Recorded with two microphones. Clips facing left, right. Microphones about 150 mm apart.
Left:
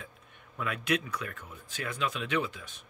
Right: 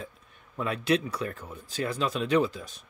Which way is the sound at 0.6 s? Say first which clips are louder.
Right 5 dB; 30° right (ahead or behind).